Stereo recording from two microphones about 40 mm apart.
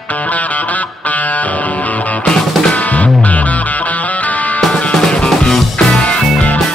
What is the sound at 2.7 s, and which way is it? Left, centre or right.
Music, left.